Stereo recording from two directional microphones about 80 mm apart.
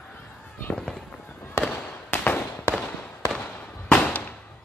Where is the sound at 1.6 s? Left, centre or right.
Centre.